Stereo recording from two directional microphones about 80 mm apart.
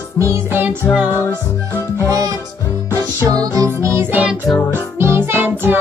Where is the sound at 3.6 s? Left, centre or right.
Right.